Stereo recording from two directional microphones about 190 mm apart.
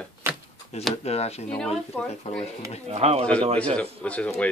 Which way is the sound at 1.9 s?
10° left (ahead or behind).